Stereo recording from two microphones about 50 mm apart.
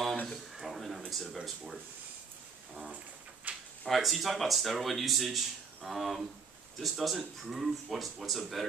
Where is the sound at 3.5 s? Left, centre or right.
Right.